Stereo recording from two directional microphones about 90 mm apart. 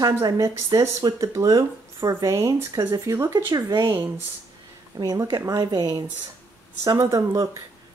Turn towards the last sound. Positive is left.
turn(degrees=-35)  # may be behind; listen again after turning